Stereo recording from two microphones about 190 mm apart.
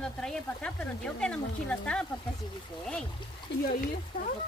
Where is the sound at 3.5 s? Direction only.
70° left (ahead or behind).